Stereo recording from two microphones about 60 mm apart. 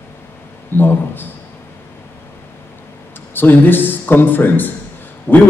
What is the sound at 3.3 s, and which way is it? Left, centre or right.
A man's voice, left.